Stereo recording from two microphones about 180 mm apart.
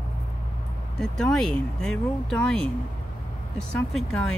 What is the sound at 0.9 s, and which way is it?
Speech, 5° left (ahead or behind).